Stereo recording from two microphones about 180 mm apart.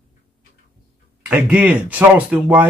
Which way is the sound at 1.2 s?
5° right (ahead or behind).